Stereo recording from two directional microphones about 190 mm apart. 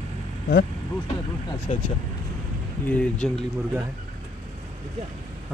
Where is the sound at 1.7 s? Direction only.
40° left (ahead or behind).